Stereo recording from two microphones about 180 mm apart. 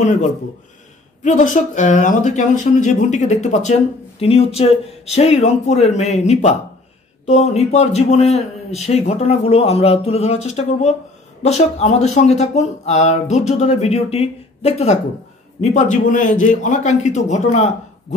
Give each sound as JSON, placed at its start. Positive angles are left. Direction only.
{"t": 0.0, "sound": "a man's voice", "side_deg": 45}